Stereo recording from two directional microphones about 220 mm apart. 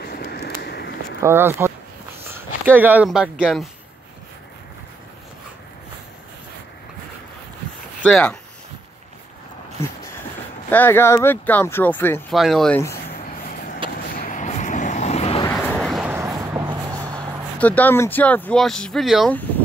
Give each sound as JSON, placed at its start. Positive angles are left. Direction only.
{"t": 0.0, "sound": "a sound", "side_deg": 45}
{"t": 1.2, "sound": "speech", "side_deg": -10}
{"t": 8.0, "sound": "speech", "side_deg": 5}
{"t": 10.7, "sound": "speech", "side_deg": 10}
{"t": 13.8, "sound": "vehicle", "side_deg": -25}
{"t": 14.1, "sound": "vehicle", "side_deg": 35}
{"t": 15.5, "sound": "a sound", "side_deg": 5}
{"t": 17.6, "sound": "speech", "side_deg": 5}